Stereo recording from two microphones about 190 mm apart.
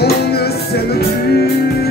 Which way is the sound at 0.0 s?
55° left (ahead or behind).